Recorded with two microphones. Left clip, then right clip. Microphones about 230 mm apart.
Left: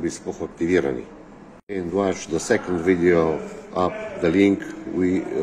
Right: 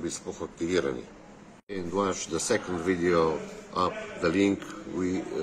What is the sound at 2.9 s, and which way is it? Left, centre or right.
Speech, centre.